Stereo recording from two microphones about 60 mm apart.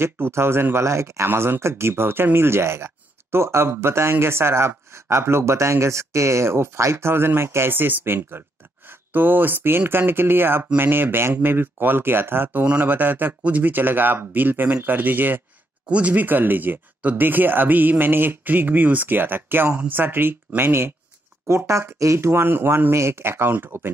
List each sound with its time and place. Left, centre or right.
0.0 s speech: right
1.3 s speech: right
12.6 s speech: right
21.5 s speech: right